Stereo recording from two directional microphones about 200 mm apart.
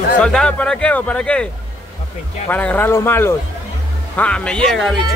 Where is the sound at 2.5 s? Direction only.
10° left (ahead or behind).